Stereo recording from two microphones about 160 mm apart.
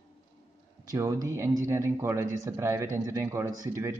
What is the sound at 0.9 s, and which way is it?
Speech, 20° right (ahead or behind).